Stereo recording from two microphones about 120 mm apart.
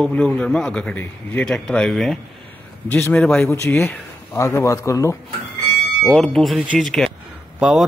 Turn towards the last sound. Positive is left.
turn(degrees=-5)  # may be behind; listen again after turning